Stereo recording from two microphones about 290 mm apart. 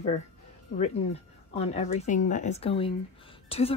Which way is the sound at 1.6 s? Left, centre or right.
Left.